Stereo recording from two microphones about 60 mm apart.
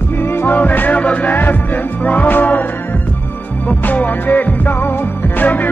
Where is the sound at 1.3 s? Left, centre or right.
Left.